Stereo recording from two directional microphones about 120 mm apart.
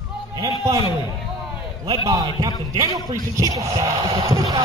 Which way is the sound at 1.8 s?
30° right (ahead or behind).